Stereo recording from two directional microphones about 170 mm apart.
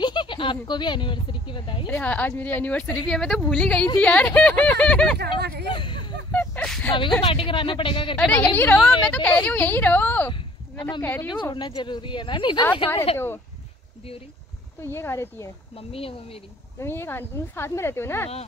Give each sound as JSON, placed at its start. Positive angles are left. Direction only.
{"t": 0.0, "sound": "speech", "side_deg": 25}
{"t": 1.9, "sound": "a woman's voice", "side_deg": 10}
{"t": 5.7, "sound": "a sound", "side_deg": 30}
{"t": 6.3, "sound": "a sound", "side_deg": 5}
{"t": 7.2, "sound": "speech", "side_deg": 30}
{"t": 8.2, "sound": "a woman's voice", "side_deg": 10}
{"t": 10.3, "sound": "a sound", "side_deg": 25}
{"t": 11.0, "sound": "a woman's voice", "side_deg": 10}
{"t": 11.4, "sound": "speech", "side_deg": 25}
{"t": 14.8, "sound": "a woman's voice", "side_deg": 15}
{"t": 15.7, "sound": "speech", "side_deg": 35}
{"t": 16.8, "sound": "a woman's voice", "side_deg": 15}